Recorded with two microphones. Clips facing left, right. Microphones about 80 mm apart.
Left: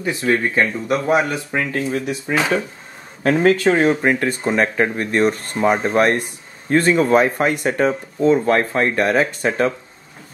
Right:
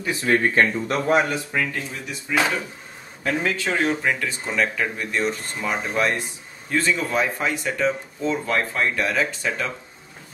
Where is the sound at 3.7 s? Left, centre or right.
Left.